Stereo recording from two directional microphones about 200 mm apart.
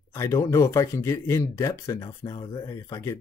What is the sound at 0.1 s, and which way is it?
Speech, 15° left (ahead or behind).